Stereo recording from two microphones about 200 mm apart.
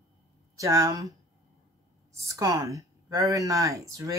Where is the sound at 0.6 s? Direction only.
15° right (ahead or behind).